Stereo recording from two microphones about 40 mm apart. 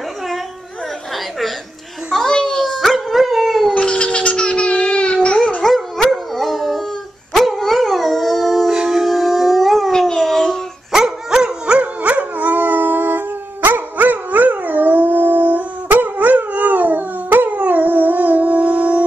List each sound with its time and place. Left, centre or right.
2.2 s a sound: centre
2.8 s dog: centre
3.7 s cat: left
4.4 s baby laughter: left
4.9 s a sound: left
5.6 s dog: centre
6.3 s howl: centre
7.3 s dog: centre
8.7 s howl: centre
9.9 s a sound: centre
10.9 s dog: centre
11.6 s dog: right
12.0 s dog: right